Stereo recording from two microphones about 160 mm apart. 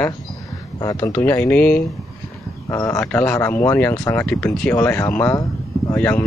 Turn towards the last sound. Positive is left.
turn(degrees=10)  # may be behind; listen again after turning